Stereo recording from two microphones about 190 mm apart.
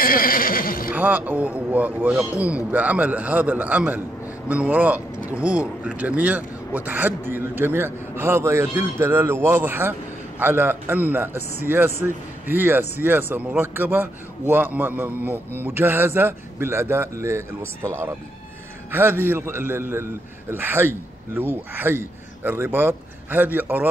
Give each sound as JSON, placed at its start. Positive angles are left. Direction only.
{"t": 0.0, "sound": "neigh", "side_deg": 50}
{"t": 0.9, "sound": "a man's voice", "side_deg": -10}